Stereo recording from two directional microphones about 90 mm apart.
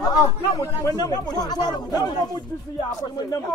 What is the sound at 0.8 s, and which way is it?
Speech, 45° left (ahead or behind).